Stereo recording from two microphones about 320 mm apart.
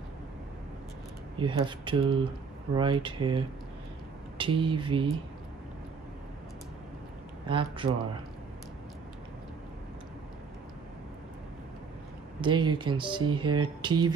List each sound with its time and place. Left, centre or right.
1.4 s speech: centre
7.4 s speech: centre
12.4 s speech: centre